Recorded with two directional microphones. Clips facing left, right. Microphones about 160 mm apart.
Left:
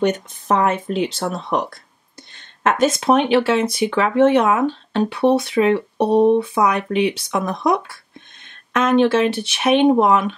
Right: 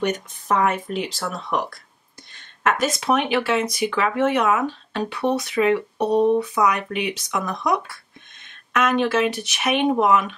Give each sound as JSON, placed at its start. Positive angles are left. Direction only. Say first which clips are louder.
{"t": 0.0, "sound": "speech", "louder": "left 5 dB", "side_deg": 25}
{"t": 8.7, "sound": "speech", "louder": "left 5 dB", "side_deg": 30}